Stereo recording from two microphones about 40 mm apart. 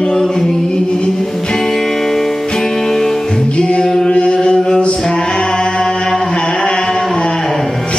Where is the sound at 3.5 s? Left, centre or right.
Left.